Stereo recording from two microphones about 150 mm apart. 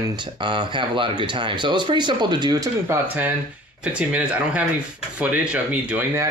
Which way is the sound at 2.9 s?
10° right (ahead or behind).